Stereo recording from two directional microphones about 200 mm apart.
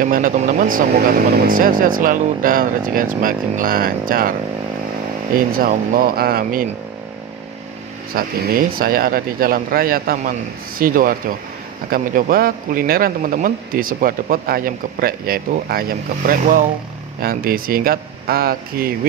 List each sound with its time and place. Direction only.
0.0 s a man's voice: 45° right (ahead or behind)
5.3 s a man's voice: 45° right (ahead or behind)
8.1 s a man's voice: 50° right (ahead or behind)